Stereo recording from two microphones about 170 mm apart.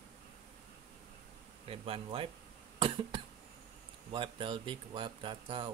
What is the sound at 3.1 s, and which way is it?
Cough, 30° right (ahead or behind).